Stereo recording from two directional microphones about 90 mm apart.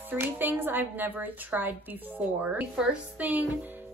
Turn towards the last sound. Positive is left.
turn(degrees=-15)  # may be behind; listen again after turning